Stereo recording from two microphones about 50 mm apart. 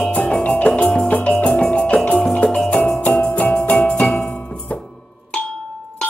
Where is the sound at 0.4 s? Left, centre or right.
Left.